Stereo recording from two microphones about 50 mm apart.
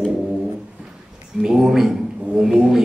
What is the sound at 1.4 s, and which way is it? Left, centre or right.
A man's voice, centre.